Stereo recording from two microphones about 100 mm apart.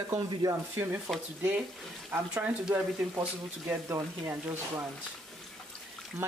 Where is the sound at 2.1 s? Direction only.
15° right (ahead or behind).